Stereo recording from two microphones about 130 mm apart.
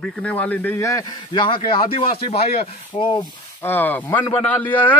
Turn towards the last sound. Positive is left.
turn(degrees=15)  # may be behind; listen again after turning